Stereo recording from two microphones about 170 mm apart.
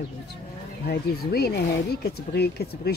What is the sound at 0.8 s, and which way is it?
A woman's voice, 70° left (ahead or behind).